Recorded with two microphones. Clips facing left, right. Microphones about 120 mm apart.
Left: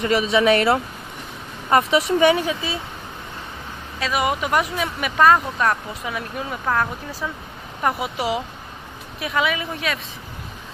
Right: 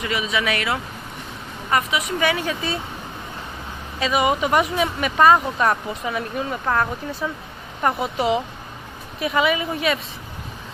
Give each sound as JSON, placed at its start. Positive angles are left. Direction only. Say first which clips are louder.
{"t": 0.0, "sound": "speech", "louder": "left 6 dB", "side_deg": 35}
{"t": 4.0, "sound": "speech", "louder": "right 2 dB", "side_deg": 0}